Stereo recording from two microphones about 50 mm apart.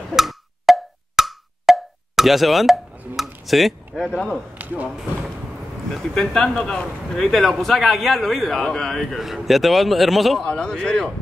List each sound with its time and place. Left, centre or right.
0.1 s wood block: centre
3.2 s speech: centre
4.1 s a man's voice: centre
4.6 s a sound: right
5.9 s a man's voice: centre
10.4 s a man's voice: centre